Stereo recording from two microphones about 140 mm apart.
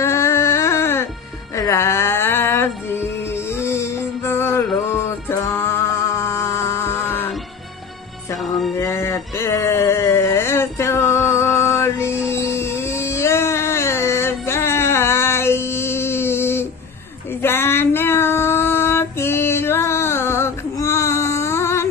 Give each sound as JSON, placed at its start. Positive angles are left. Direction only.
{"t": 0.0, "sound": "a sound", "side_deg": 20}
{"t": 1.6, "sound": "music", "side_deg": 20}
{"t": 8.5, "sound": "music", "side_deg": 0}
{"t": 8.7, "sound": "a sound", "side_deg": 20}
{"t": 12.3, "sound": "music", "side_deg": 20}
{"t": 17.4, "sound": "female singing", "side_deg": 15}